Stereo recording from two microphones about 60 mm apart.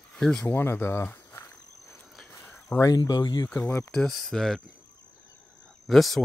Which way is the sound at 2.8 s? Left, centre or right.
Left.